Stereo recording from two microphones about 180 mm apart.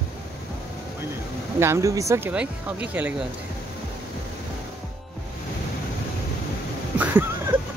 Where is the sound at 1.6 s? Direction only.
15° right (ahead or behind).